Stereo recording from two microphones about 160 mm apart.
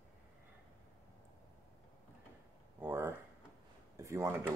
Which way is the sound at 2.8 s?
15° right (ahead or behind).